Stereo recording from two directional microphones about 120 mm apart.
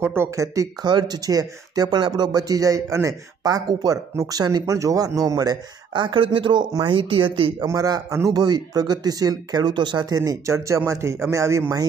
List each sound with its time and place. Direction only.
0.0 s speech: 20° right (ahead or behind); by 7.5 s 45° right (ahead or behind)
7.6 s speech: 30° right (ahead or behind)